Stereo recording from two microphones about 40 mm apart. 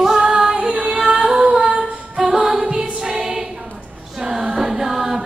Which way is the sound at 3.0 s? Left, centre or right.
Centre.